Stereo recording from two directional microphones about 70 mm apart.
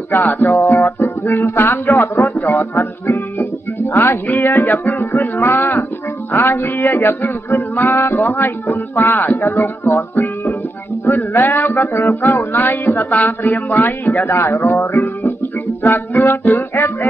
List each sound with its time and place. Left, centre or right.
0.1 s music: left
3.9 s a sound: left
13.1 s a man's voice: left